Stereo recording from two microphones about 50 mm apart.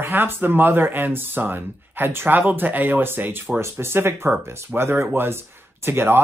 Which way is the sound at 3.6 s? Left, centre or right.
Right.